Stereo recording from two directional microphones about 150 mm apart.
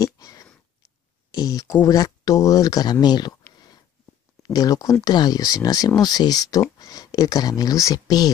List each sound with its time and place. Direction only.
0.0 s a sound: 20° left (ahead or behind)
1.3 s speech: 25° left (ahead or behind)
4.4 s speech: 25° left (ahead or behind)